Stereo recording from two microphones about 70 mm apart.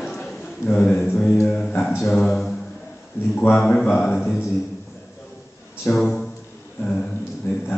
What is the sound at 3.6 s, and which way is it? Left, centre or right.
Speech, centre.